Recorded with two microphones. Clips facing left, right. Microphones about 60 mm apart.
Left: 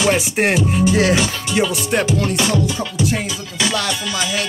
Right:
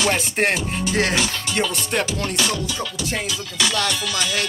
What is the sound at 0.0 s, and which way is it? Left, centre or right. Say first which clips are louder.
Music: left 4 dB; centre.